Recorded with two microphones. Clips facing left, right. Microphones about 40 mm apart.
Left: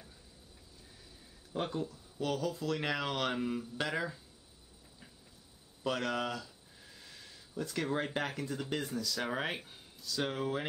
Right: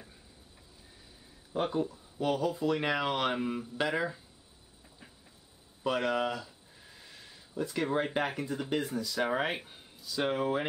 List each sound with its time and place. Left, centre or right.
1.5 s speech: centre
5.9 s speech: centre